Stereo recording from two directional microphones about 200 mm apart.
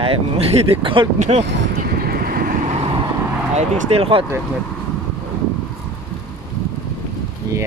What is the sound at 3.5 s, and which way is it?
Speech, 35° right (ahead or behind).